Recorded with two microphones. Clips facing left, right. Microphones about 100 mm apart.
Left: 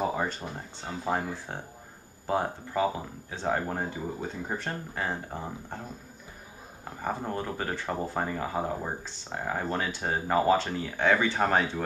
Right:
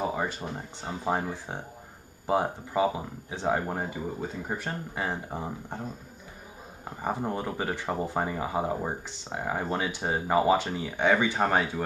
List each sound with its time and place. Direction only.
0.0 s speech: 5° right (ahead or behind)
0.7 s speech: 15° right (ahead or behind)
6.8 s speech: 15° right (ahead or behind)